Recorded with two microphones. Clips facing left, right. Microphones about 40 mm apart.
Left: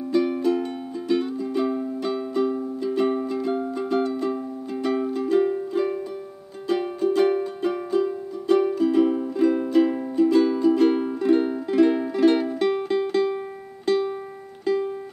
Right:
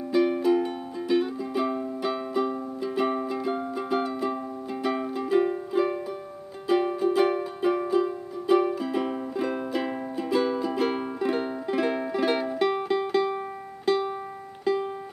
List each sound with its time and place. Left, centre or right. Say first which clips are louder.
0.1 s music: even; centre